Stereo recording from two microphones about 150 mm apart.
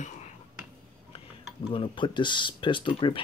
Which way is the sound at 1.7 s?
35° left (ahead or behind).